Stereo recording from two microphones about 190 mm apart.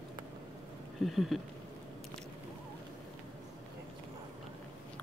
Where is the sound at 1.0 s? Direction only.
Centre (ahead or behind).